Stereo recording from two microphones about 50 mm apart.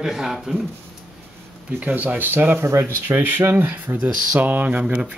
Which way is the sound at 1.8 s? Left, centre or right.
Right.